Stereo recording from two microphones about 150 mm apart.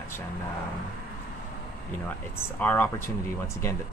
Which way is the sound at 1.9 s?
15° left (ahead or behind).